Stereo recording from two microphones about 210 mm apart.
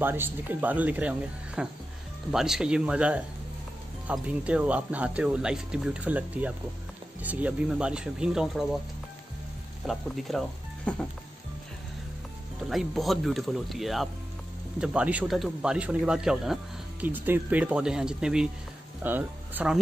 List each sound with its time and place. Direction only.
0.0 s a man's voice: 10° right (ahead or behind)
9.8 s a man's voice: centre (ahead or behind)
12.5 s a man's voice: centre (ahead or behind)